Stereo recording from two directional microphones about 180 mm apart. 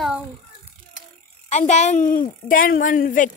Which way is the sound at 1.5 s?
40° left (ahead or behind).